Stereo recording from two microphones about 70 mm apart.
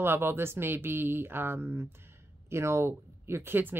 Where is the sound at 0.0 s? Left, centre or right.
Right.